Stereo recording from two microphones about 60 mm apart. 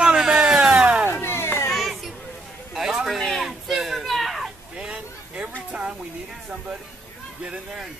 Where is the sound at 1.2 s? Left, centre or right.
Left.